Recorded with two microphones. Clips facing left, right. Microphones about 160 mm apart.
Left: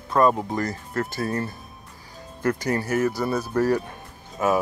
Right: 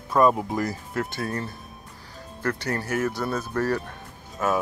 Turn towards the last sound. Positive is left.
turn(degrees=10)  # may be behind; listen again after turning